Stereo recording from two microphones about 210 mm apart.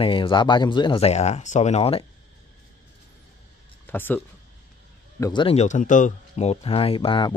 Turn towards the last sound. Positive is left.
turn(degrees=25)  # may be behind; listen again after turning